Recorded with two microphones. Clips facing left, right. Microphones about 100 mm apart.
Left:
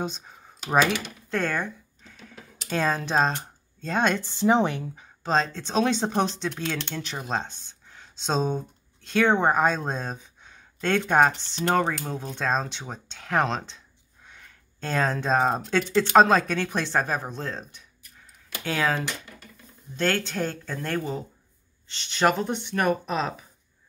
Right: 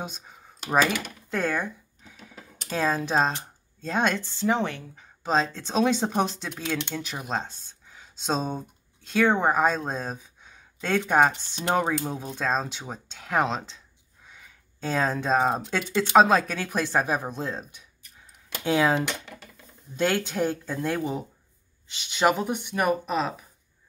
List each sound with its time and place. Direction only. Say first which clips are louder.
0.0 s speech: left 5 dB; 5° right (ahead or behind)
1.3 s a sound: even; 5° right (ahead or behind)
3.8 s speech: left 1 dB; centre (ahead or behind)
4.3 s speech: left 4 dB; 20° left (ahead or behind)
5.0 s speech: even; 5° right (ahead or behind)
14.2 s a sound: left 1 dB; 5° right (ahead or behind)
15.6 s speech: left 3 dB; 10° right (ahead or behind)